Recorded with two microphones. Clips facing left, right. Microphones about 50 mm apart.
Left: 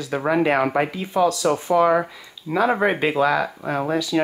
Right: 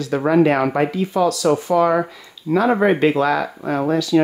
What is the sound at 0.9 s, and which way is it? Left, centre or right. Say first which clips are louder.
Speech: right 2 dB; left.